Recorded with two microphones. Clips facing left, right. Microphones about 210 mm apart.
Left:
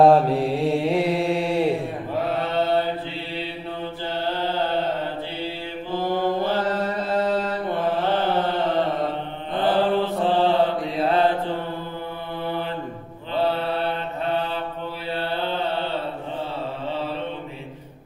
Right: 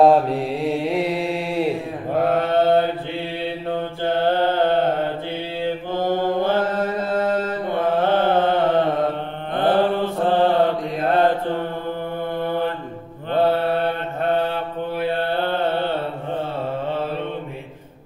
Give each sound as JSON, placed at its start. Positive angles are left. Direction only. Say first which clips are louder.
{"t": 0.0, "sound": "mantra", "louder": "even", "side_deg": 0}
{"t": 2.1, "sound": "mantra", "louder": "right 6 dB", "side_deg": -50}
{"t": 13.3, "sound": "mantra", "louder": "right 5 dB", "side_deg": -50}